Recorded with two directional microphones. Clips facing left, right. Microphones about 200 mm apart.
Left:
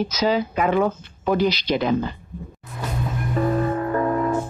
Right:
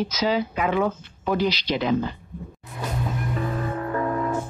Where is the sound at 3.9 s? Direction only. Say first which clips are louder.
Left 1 dB; 40° left (ahead or behind).